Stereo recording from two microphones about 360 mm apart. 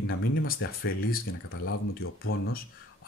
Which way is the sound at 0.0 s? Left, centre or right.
Left.